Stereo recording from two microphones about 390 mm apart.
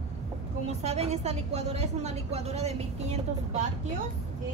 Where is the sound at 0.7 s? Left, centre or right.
Centre.